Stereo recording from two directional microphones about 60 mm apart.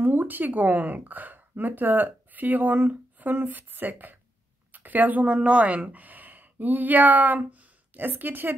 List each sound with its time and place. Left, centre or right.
0.0 s a woman's voice: right